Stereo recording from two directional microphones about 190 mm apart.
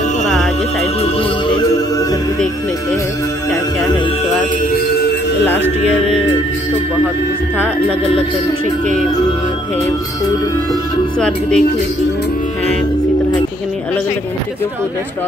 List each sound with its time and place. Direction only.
0.2 s music: centre (ahead or behind)
4.7 s music: 55° left (ahead or behind)
11.1 s speech: 5° left (ahead or behind)